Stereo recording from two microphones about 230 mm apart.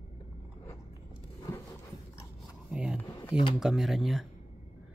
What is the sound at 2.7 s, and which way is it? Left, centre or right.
Speech, centre.